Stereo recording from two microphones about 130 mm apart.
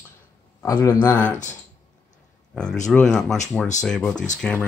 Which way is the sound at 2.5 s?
5° left (ahead or behind).